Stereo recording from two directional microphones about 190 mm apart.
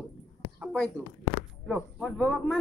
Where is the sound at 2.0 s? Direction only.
Centre (ahead or behind).